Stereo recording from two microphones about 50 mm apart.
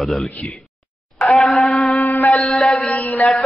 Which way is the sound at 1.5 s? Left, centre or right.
Centre.